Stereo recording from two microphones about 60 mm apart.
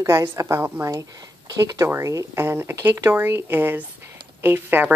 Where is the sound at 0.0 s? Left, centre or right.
Right.